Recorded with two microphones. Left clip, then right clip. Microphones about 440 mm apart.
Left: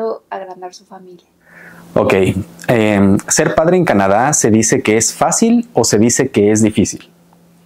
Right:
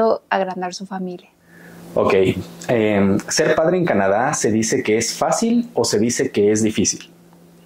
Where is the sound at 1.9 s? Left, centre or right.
Left.